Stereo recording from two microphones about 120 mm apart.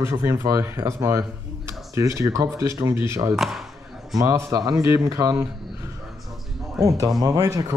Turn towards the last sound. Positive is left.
turn(degrees=-30)  # may be behind; listen again after turning